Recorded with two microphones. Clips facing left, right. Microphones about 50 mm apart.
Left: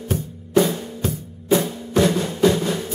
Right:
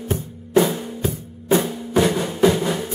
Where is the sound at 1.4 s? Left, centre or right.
Centre.